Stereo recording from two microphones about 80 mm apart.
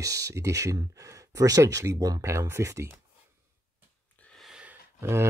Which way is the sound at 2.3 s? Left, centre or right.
Right.